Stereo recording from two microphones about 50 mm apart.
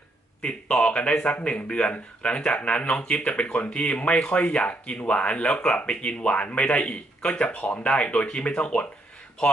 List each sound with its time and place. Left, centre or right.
0.4 s speech: left